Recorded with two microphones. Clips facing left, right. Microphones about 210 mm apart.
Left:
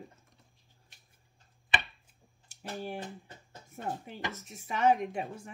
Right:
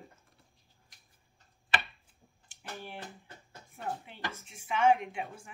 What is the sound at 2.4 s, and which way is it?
Speech, 40° left (ahead or behind).